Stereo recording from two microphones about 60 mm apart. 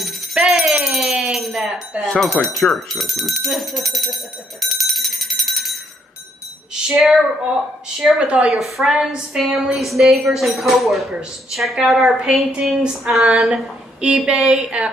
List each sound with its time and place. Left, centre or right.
0.0 s a sound: centre
2.0 s speech: centre
8.2 s speech: centre
8.5 s speech: centre